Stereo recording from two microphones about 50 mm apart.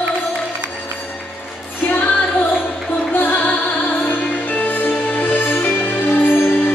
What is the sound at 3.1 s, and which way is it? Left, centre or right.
Music, left.